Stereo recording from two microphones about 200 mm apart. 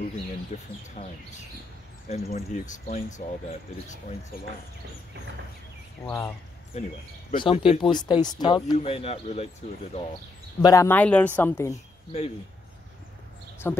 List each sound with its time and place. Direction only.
1.0 s speech: 40° left (ahead or behind)
6.0 s speech: 15° left (ahead or behind)
7.3 s speech: 25° left (ahead or behind)
10.6 s speech: 15° left (ahead or behind)
11.7 s speech: 30° left (ahead or behind)
13.6 s speech: 15° left (ahead or behind)